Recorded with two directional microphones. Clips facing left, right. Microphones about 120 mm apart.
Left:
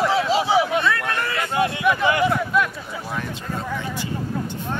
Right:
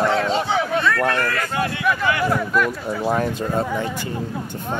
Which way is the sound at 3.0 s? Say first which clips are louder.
Right 10 dB; 45° right (ahead or behind).